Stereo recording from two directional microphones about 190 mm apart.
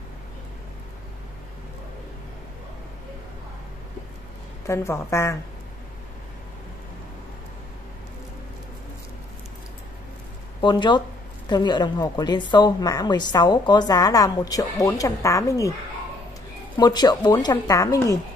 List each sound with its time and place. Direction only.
4.6 s a woman's voice: 15° left (ahead or behind)
10.6 s a woman's voice: 25° left (ahead or behind)
16.7 s a woman's voice: 20° left (ahead or behind)